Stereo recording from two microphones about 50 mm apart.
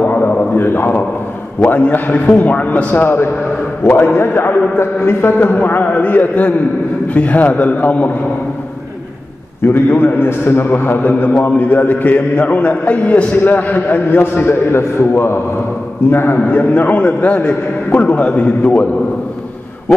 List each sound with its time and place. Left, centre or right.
0.0 s a sound: left
1.7 s a man's voice: left
3.0 s a man's voice: left
4.7 s a man's voice: left
5.5 s a man's voice: left
9.6 s a man's voice: left
16.4 s a man's voice: left